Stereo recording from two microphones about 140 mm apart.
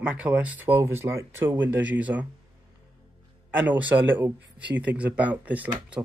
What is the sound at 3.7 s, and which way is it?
Speech, 10° right (ahead or behind).